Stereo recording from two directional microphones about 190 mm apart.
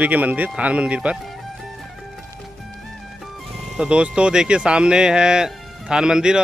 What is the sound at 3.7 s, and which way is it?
Speech, 5° right (ahead or behind).